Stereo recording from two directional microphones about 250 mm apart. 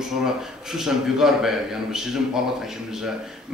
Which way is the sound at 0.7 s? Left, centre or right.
Centre.